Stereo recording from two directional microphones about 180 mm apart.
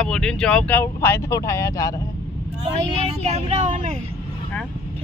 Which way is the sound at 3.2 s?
35° right (ahead or behind).